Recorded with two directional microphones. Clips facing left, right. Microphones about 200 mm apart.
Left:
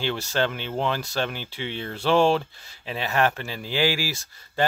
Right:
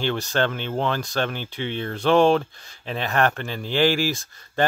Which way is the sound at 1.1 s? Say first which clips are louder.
Right 2 dB; 50° right (ahead or behind).